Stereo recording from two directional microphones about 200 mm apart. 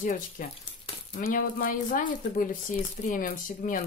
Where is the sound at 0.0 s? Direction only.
40° left (ahead or behind).